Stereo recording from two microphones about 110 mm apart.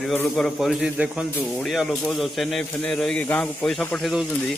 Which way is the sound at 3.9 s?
Centre (ahead or behind).